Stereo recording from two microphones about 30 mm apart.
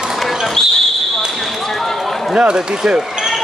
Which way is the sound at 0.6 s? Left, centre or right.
Centre.